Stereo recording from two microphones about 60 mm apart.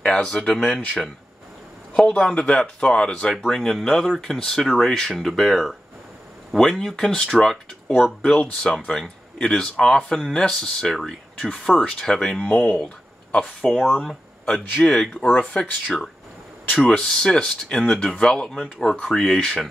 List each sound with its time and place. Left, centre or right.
0.0 s speech: centre
8.2 s speech: centre
8.6 s speech: centre
12.4 s speech: left
15.2 s speech: left
16.8 s speech: centre